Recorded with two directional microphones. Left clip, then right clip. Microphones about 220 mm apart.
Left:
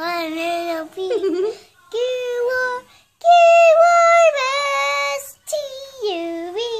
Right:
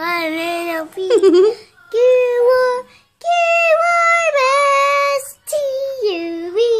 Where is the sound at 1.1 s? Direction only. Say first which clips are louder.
Right 10 dB; 45° right (ahead or behind).